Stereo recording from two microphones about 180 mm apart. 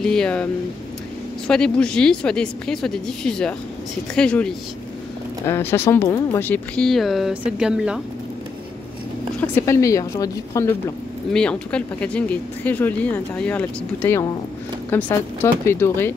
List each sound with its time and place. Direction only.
0.0 s speech: 5° left (ahead or behind)
1.5 s speech: 5° left (ahead or behind)
9.4 s speech: 15° left (ahead or behind)